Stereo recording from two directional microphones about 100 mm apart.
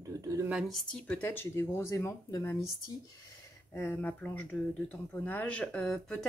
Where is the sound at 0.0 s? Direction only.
35° right (ahead or behind).